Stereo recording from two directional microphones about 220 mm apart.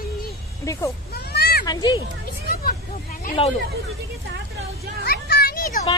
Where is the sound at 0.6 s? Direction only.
15° left (ahead or behind).